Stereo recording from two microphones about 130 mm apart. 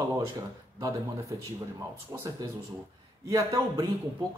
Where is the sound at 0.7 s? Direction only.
25° right (ahead or behind).